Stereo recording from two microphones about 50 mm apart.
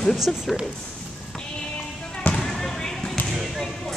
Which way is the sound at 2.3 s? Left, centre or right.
Centre.